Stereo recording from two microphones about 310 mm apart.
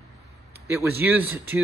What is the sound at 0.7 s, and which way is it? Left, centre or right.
Speech, centre.